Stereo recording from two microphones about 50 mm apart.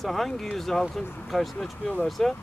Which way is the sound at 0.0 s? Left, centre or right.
Centre.